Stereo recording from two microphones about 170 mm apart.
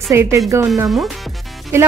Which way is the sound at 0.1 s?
15° right (ahead or behind).